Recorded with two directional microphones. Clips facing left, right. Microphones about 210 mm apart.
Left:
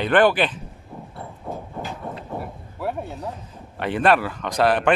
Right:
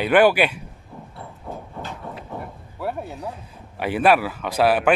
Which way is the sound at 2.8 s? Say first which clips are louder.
Even; centre (ahead or behind).